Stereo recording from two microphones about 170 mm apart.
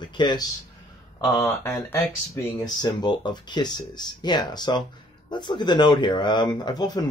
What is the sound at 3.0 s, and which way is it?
Speech, 25° left (ahead or behind).